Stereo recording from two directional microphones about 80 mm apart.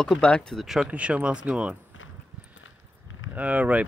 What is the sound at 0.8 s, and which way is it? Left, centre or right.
Speech, centre.